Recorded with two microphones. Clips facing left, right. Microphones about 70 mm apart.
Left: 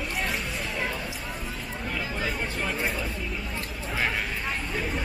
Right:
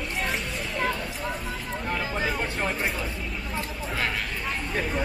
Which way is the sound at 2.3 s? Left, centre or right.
Centre.